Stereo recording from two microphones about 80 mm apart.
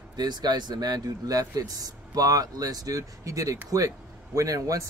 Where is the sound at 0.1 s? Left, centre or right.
Right.